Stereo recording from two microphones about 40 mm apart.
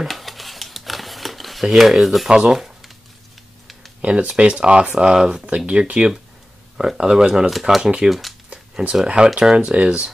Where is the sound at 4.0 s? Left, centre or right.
Right; by 5.5 s centre.